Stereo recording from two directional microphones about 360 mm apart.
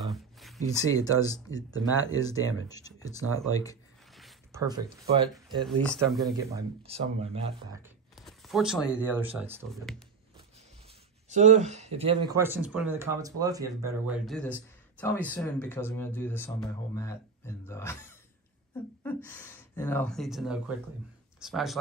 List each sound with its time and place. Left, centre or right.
0.0 s a sound: centre
2.0 s speech: centre
4.2 s zipper: centre
5.8 s speech: centre
6.3 s speech: centre
8.2 s speech: centre
11.2 s speech: centre
19.0 s speech: centre